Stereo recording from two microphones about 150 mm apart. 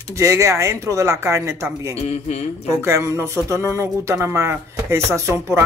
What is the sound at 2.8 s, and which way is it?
Speech, 20° right (ahead or behind).